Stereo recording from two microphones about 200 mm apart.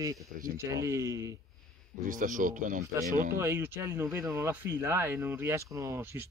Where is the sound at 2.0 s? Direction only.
40° right (ahead or behind).